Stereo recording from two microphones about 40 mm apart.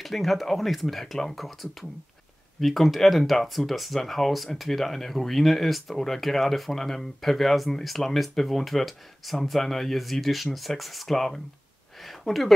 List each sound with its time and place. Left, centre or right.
0.0 s speech: centre